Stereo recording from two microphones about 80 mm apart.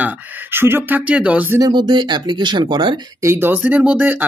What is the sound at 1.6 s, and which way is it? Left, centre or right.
Speech, right.